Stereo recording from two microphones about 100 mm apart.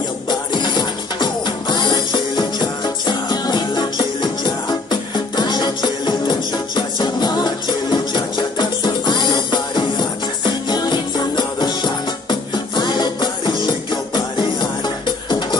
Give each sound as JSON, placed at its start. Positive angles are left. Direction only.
{"t": 0.3, "sound": "music", "side_deg": 45}